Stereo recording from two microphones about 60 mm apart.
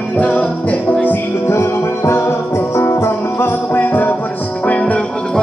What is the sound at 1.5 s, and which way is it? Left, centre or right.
Music, left.